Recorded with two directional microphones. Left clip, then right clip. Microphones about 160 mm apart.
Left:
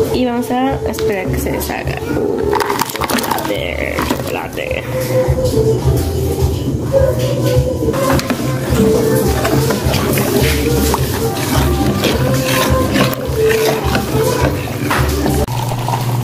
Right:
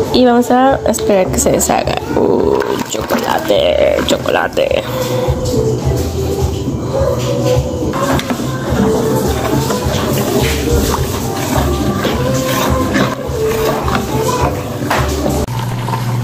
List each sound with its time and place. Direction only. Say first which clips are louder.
0.1 s a woman's voice: right 6 dB; 45° right (ahead or behind)
3.5 s a woman's voice: right 8 dB; 50° right (ahead or behind)